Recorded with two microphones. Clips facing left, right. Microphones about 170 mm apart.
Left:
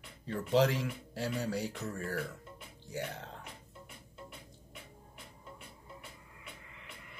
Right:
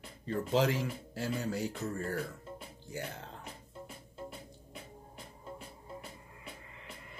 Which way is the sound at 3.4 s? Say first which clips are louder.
Right 4 dB; 35° right (ahead or behind).